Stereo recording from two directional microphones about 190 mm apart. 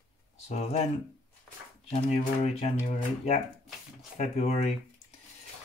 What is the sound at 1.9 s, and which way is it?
Speech, 35° left (ahead or behind).